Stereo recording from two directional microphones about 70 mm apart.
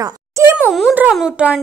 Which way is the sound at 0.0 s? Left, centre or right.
Right.